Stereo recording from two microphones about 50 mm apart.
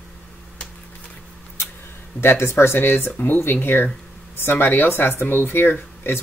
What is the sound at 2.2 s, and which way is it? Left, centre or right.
Speech, left.